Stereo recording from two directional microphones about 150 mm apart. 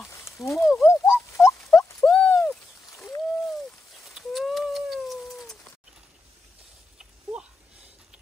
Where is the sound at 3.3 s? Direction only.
Centre (ahead or behind).